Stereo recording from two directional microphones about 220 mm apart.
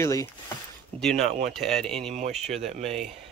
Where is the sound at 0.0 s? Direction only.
15° left (ahead or behind).